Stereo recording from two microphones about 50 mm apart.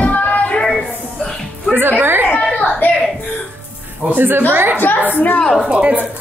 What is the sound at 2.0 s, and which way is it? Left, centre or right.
Speech, right.